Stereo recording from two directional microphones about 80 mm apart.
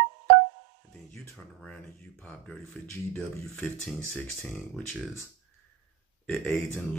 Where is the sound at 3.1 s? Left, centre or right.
Centre.